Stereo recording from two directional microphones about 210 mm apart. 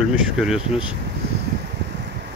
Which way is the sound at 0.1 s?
5° right (ahead or behind).